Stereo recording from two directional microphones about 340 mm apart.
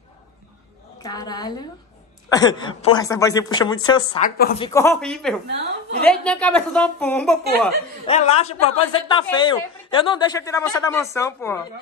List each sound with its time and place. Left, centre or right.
1.0 s a woman's voice: centre
8.1 s a woman's voice: centre